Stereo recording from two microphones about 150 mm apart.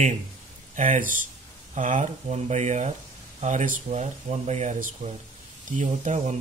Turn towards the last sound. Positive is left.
turn(degrees=-55)  # may be behind; listen again after turning